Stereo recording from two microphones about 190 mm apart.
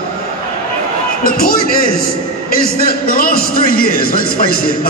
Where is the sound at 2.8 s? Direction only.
50° left (ahead or behind).